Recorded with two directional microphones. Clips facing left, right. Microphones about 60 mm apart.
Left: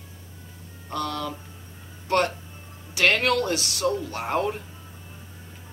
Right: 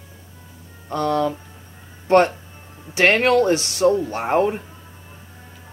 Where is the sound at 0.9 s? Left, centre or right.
Right.